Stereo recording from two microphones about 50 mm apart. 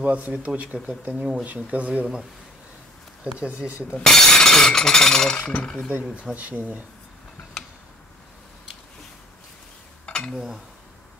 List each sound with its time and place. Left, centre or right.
0.0 s speech: right
3.3 s speech: right
3.9 s speech: centre
6.3 s speech: right
10.0 s dishes: centre
10.3 s speech: centre